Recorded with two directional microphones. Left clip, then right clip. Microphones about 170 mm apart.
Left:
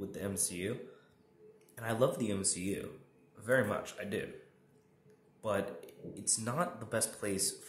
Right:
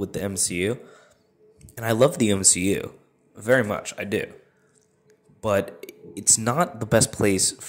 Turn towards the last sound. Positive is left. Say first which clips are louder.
# right 15 dB
turn(degrees=-40)  # may be behind; listen again after turning